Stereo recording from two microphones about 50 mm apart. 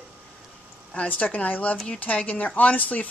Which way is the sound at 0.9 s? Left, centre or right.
Left.